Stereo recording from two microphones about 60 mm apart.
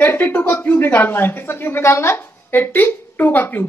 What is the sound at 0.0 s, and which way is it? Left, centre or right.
A woman's voice, left.